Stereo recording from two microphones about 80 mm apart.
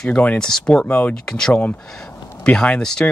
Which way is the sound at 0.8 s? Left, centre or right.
Centre.